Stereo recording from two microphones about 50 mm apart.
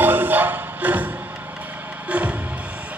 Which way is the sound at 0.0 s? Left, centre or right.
Right.